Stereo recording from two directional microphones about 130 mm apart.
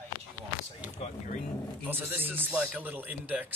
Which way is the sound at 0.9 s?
60° left (ahead or behind).